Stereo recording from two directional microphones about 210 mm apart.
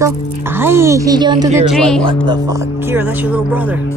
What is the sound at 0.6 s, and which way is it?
Speech, 10° right (ahead or behind).